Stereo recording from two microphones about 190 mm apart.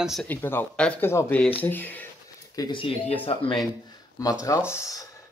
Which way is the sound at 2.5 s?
25° left (ahead or behind).